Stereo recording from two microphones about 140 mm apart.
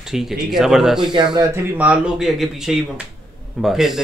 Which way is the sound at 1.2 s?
30° right (ahead or behind).